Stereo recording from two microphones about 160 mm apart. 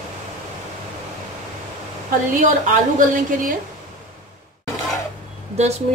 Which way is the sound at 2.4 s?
55° right (ahead or behind).